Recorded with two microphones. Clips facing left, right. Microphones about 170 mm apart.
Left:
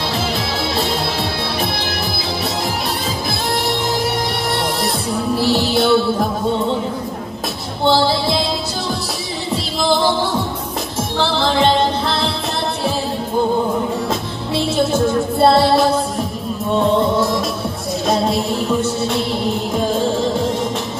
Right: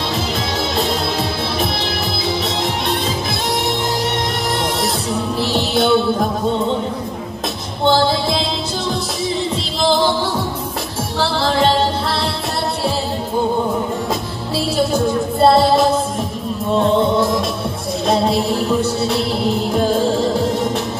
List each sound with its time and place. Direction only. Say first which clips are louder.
4.8 s music: even; centre (ahead or behind)
7.8 s music: even; centre (ahead or behind)
11.1 s music: even; centre (ahead or behind)
14.8 s music: even; centre (ahead or behind)